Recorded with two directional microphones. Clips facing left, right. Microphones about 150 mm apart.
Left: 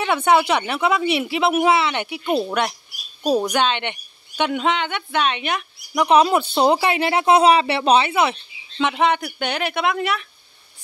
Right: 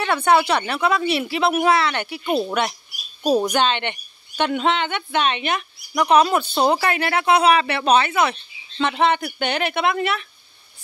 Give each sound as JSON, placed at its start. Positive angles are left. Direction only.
{"t": 0.0, "sound": "a woman's voice", "side_deg": 10}
{"t": 2.2, "sound": "a woman's voice", "side_deg": -5}
{"t": 3.5, "sound": "a woman's voice", "side_deg": 10}
{"t": 8.7, "sound": "a woman's voice", "side_deg": 10}